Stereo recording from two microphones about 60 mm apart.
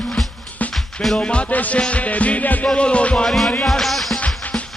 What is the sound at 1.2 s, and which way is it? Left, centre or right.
Music, left.